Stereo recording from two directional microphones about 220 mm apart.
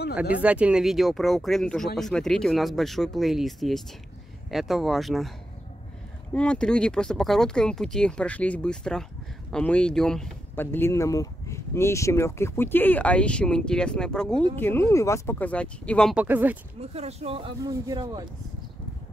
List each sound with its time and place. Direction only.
0.1 s speech: 5° right (ahead or behind)
6.3 s speech: 5° left (ahead or behind)
16.9 s speech: 30° right (ahead or behind)